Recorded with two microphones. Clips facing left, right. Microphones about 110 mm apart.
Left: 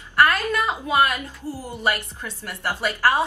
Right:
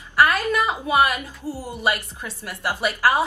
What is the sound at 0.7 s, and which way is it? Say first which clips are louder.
A woman's voice: right 1 dB; 10° right (ahead or behind).